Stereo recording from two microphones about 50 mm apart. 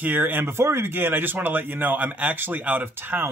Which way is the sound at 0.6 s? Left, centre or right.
Right.